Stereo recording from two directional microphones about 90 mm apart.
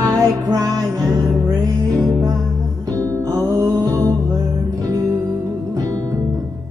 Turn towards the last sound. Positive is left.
turn(degrees=-45)  # may be behind; listen again after turning